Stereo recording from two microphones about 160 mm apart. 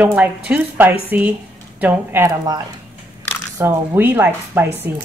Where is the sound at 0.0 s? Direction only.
10° right (ahead or behind).